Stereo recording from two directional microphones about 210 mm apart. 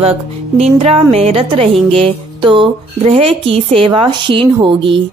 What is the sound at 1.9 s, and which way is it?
Music, 25° right (ahead or behind).